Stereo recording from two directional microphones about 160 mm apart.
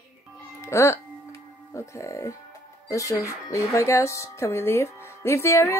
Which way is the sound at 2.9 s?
20° left (ahead or behind).